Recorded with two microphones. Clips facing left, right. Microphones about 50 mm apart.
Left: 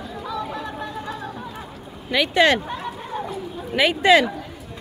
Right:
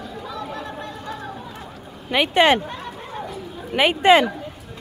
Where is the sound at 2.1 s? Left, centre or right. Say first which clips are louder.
Right 1 dB; right.